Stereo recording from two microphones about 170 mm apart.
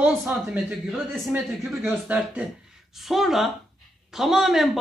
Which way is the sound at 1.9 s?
10° right (ahead or behind).